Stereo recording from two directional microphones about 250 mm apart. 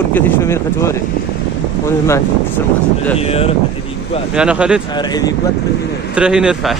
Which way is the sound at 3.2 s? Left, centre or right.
Left.